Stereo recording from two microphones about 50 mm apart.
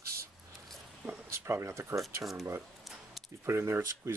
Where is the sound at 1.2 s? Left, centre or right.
Right.